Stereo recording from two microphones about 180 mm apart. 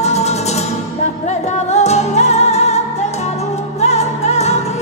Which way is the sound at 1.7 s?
40° left (ahead or behind).